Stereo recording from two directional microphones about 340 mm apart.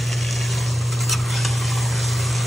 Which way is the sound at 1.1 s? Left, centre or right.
Centre.